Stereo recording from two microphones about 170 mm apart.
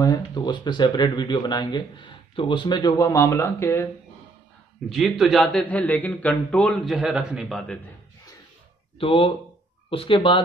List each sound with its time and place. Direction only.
0.0 s speech: 25° left (ahead or behind)
4.8 s a man's voice: centre (ahead or behind)
8.9 s speech: 35° left (ahead or behind)